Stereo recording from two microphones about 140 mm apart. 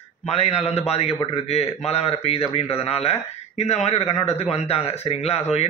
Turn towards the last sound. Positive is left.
turn(degrees=50)  # may be behind; listen again after turning